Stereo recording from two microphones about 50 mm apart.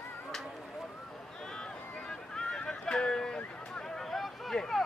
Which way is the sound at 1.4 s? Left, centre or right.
Centre.